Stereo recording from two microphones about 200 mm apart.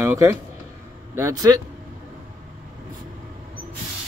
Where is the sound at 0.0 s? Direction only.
10° right (ahead or behind).